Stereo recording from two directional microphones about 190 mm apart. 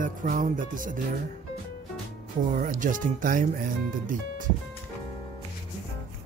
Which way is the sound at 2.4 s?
45° right (ahead or behind).